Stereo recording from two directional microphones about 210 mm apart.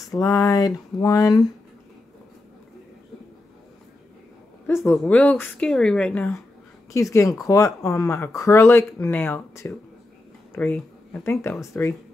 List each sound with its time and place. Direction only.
0.2 s speech: 15° left (ahead or behind)
4.6 s a woman's voice: 10° left (ahead or behind)